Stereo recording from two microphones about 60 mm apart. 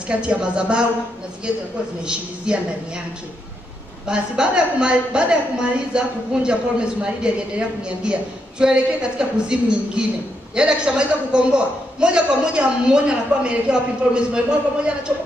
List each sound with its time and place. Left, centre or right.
0.1 s speech: centre
2.0 s speech: centre
4.1 s speech: centre